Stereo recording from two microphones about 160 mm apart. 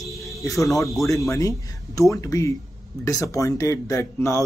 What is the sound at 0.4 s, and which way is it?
Speech, 20° left (ahead or behind).